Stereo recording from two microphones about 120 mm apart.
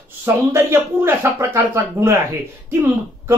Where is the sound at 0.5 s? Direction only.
20° right (ahead or behind).